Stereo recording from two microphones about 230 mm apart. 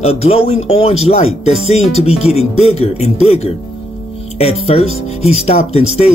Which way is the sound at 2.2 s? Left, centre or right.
Left.